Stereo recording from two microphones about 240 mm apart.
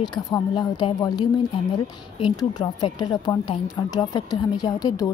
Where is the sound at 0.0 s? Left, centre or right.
Centre.